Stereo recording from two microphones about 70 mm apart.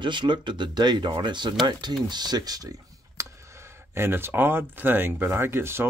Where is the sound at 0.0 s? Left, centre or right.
Right.